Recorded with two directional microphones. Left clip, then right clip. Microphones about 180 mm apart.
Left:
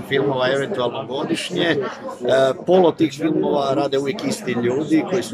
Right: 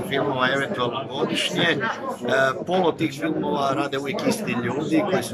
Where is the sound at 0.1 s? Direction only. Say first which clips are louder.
Left 4 dB; 25° left (ahead or behind).